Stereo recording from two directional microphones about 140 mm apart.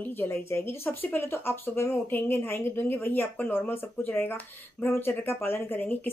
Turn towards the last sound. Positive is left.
turn(degrees=15)  # may be behind; listen again after turning